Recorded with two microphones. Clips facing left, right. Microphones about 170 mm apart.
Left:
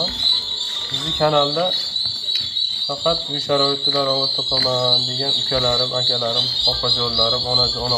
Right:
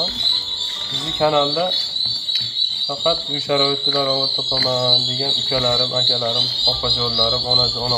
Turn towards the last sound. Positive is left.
turn(degrees=0)  # may be behind; listen again after turning